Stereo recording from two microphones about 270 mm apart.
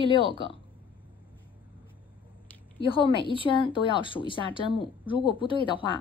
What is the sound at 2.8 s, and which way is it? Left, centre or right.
Speech, centre.